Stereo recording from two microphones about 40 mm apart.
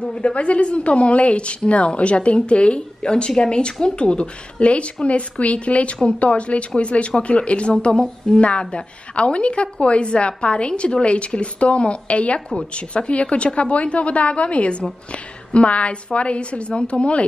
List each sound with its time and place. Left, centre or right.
0.0 s a woman's voice: left